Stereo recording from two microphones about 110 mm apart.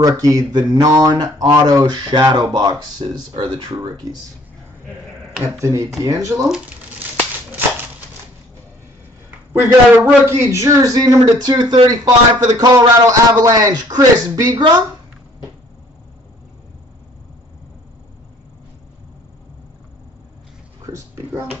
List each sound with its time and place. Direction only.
0.0 s a man's voice: 30° right (ahead or behind)
5.4 s speech: 30° right (ahead or behind)
9.5 s a man's voice: 20° right (ahead or behind)
20.9 s a sound: 35° right (ahead or behind)